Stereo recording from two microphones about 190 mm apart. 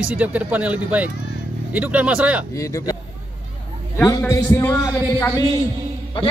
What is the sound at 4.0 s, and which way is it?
A man's voice, 15° left (ahead or behind).